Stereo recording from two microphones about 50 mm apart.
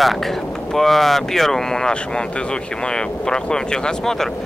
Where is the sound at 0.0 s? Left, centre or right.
Centre.